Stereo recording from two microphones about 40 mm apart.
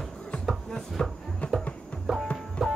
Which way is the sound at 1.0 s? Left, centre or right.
Centre.